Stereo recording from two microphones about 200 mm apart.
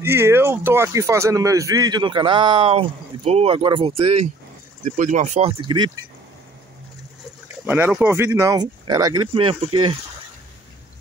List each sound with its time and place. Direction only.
0.0 s speech: 10° right (ahead or behind)
7.6 s speech: 10° right (ahead or behind); by 9.8 s 25° right (ahead or behind)